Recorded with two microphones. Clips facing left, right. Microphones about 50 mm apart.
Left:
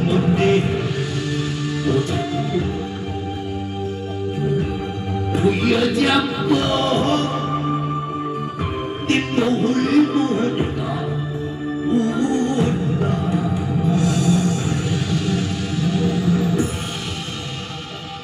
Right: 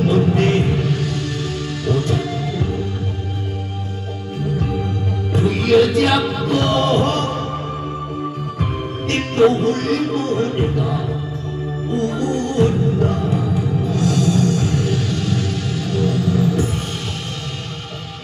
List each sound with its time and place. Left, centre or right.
0.0 s music: centre
5.3 s music: centre
9.6 s music: centre
11.9 s music: centre
16.0 s music: centre